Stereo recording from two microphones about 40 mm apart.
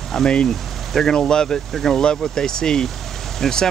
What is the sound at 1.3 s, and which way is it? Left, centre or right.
Speech, centre.